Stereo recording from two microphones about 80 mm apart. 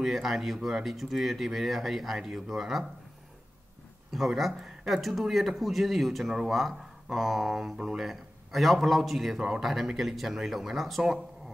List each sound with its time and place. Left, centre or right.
0.0 s speech: centre
4.1 s speech: centre